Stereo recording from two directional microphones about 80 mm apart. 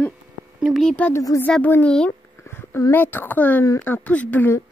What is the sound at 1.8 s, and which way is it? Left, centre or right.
Speech, centre.